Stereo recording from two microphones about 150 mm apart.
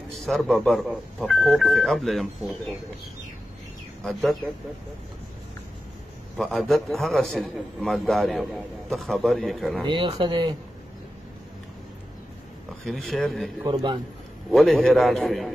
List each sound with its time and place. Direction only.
0.2 s a man's voice: centre (ahead or behind)
4.0 s a man's voice: 5° left (ahead or behind)
6.3 s a man's voice: centre (ahead or behind)
9.8 s speech: 30° right (ahead or behind)
12.8 s a man's voice: centre (ahead or behind)